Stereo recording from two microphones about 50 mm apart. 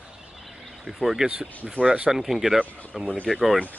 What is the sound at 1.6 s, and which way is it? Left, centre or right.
Speech, right.